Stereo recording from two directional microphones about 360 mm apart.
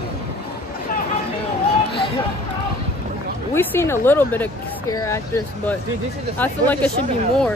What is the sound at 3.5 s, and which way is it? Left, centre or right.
Speech, centre.